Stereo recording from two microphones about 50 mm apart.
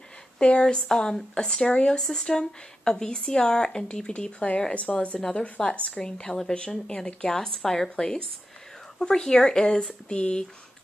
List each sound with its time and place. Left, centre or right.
0.4 s speech: left
6.0 s speech: centre